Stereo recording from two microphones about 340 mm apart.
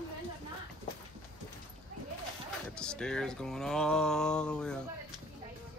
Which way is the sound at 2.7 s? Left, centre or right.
Centre.